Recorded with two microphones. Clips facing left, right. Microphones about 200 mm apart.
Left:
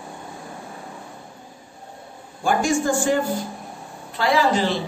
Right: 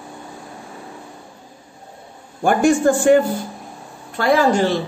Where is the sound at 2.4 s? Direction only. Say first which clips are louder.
Right 6 dB; 60° right (ahead or behind).